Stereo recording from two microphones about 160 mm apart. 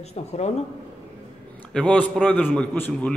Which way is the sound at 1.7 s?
5° left (ahead or behind).